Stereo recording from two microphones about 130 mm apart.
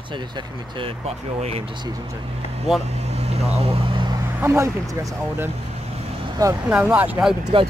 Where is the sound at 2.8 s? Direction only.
55° right (ahead or behind); by 4.1 s 40° right (ahead or behind).